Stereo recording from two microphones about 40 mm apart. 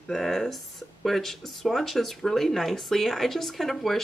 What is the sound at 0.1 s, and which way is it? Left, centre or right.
Speech, centre.